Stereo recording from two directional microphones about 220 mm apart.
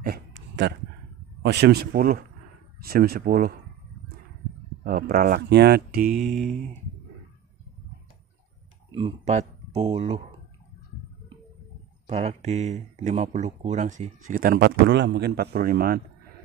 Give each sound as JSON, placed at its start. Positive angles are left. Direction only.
{"t": 0.0, "sound": "a sound", "side_deg": -50}
{"t": 1.4, "sound": "speech", "side_deg": -50}
{"t": 4.8, "sound": "speech", "side_deg": -45}
{"t": 6.0, "sound": "mantra", "side_deg": 0}
{"t": 8.9, "sound": "speech", "side_deg": -25}
{"t": 12.1, "sound": "speech", "side_deg": -30}